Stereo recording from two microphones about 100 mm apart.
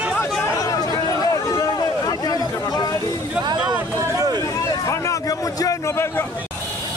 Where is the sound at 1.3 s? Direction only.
35° left (ahead or behind).